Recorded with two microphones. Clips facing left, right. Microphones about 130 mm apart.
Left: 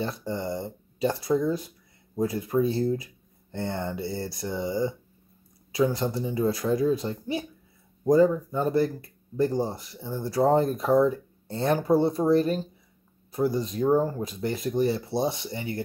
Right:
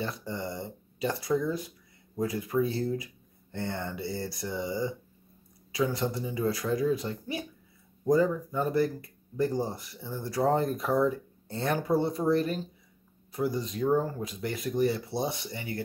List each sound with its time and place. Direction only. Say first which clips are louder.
0.0 s speech: left 4 dB; 30° left (ahead or behind)